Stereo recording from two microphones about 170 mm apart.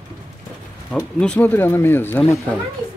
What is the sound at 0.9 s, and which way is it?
Speech, 10° left (ahead or behind).